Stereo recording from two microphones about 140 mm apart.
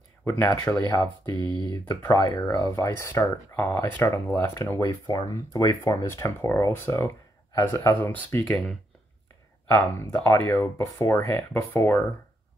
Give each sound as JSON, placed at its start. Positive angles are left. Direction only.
{"t": 0.2, "sound": "speech", "side_deg": 10}
{"t": 1.4, "sound": "speech", "side_deg": -35}
{"t": 1.7, "sound": "speech", "side_deg": 25}
{"t": 4.8, "sound": "speech", "side_deg": 25}